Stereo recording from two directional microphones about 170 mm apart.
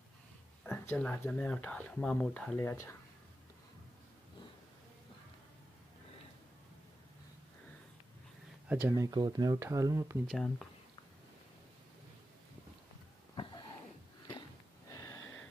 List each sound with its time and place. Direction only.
0.7 s speech: 10° left (ahead or behind)
8.6 s speech: 10° right (ahead or behind)
10.2 s speech: centre (ahead or behind)
14.9 s a sound: 15° left (ahead or behind)